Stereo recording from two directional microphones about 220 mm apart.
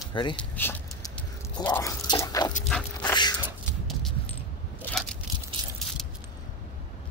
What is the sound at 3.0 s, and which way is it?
Dog, 20° left (ahead or behind).